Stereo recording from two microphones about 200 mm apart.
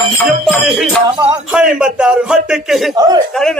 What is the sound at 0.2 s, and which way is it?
A man's voice, centre (ahead or behind).